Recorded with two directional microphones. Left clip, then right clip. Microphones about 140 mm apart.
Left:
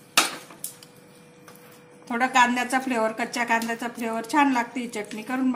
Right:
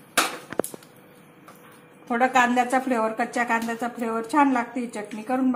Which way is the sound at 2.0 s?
Centre (ahead or behind).